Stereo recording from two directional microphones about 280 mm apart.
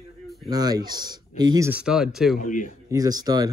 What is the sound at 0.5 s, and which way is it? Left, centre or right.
Speech, centre.